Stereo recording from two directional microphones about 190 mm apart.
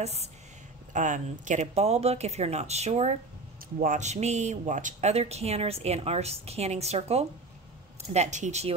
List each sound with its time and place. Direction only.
0.0 s speech: 35° right (ahead or behind)